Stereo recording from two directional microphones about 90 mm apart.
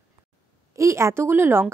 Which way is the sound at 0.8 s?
30° right (ahead or behind).